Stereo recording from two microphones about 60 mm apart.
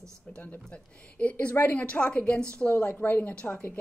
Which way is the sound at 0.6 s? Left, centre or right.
Left.